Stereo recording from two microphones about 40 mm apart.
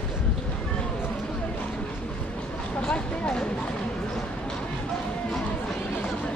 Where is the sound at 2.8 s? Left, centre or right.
Left.